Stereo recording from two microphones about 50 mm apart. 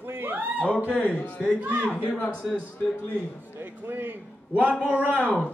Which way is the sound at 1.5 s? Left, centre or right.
Right.